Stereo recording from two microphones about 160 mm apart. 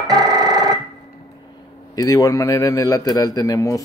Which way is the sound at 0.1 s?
25° right (ahead or behind).